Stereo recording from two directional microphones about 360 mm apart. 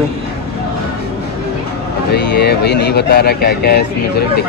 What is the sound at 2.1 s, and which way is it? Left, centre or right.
Speech, left.